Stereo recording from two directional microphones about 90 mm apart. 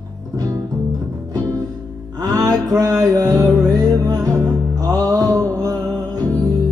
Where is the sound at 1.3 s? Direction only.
50° right (ahead or behind).